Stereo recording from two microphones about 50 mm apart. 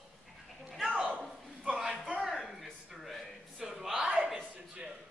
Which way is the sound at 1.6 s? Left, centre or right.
Centre.